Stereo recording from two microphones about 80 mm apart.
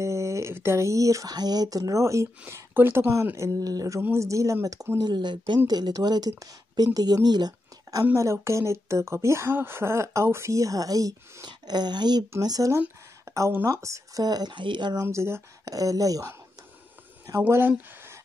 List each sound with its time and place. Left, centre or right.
0.0 s speech: right
2.5 s speech: right
4.0 s speech: right
5.0 s speech: right
5.7 s a woman's voice: right
7.2 s a sound: right
8.0 s speech: right
11.4 s a woman's voice: right
12.4 s speech: right
13.3 s speech: right
14.2 s speech: right
15.0 s speech: right
15.6 s speech: right
17.3 s speech: right